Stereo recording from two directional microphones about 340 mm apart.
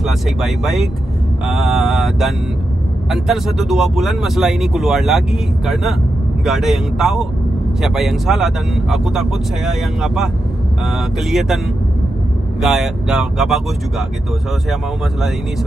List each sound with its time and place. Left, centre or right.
0.0 s speech: centre
6.4 s speech: centre